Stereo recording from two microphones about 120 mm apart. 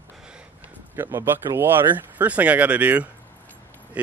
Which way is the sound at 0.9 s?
20° right (ahead or behind).